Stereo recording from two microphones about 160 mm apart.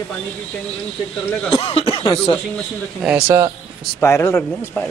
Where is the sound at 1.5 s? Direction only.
35° left (ahead or behind).